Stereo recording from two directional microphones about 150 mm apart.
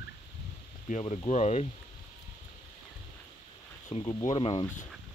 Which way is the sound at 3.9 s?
40° left (ahead or behind).